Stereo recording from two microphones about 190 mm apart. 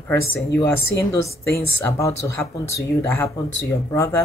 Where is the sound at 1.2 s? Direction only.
15° left (ahead or behind).